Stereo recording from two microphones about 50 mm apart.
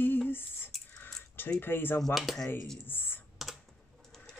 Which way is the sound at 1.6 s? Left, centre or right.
Left.